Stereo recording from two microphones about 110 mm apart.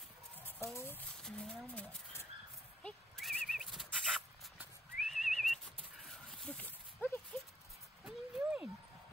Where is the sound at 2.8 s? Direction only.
5° left (ahead or behind).